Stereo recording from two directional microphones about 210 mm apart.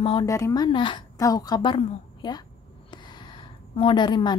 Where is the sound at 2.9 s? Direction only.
20° left (ahead or behind).